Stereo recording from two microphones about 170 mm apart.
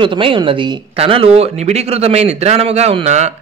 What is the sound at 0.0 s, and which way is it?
Speech, 30° right (ahead or behind).